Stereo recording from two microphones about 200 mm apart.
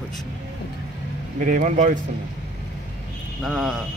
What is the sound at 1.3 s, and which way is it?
Speech, 40° right (ahead or behind).